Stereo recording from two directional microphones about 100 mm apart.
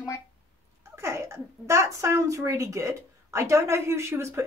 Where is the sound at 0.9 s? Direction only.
30° right (ahead or behind).